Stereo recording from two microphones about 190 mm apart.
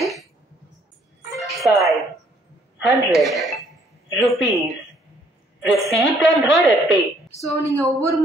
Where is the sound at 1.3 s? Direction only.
Centre (ahead or behind).